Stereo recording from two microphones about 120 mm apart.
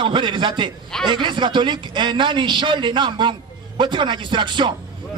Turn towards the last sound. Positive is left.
turn(degrees=-40)  # may be behind; listen again after turning